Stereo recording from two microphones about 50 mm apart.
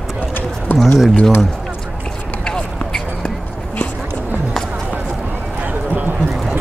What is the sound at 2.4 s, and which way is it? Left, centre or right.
Run, centre.